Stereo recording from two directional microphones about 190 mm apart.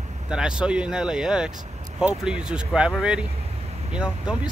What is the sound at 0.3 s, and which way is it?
Speech, 5° right (ahead or behind).